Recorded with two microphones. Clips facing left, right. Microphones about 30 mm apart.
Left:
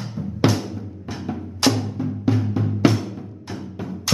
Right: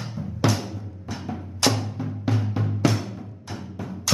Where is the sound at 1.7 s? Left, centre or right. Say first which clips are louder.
Left 5 dB; centre.